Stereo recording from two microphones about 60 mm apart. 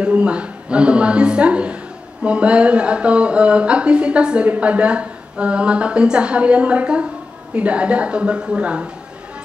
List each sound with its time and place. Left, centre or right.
0.0 s speech: centre